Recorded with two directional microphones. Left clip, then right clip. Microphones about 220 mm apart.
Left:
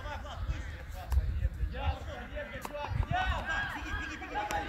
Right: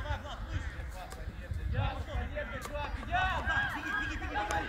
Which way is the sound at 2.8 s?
5° right (ahead or behind).